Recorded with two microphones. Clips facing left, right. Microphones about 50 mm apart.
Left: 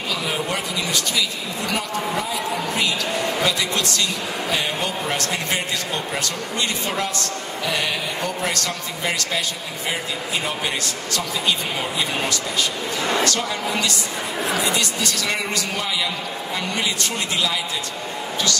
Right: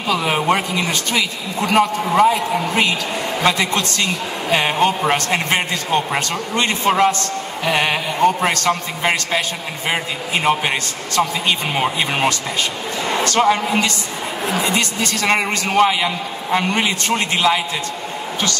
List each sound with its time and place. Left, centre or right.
0.1 s a woman's voice: right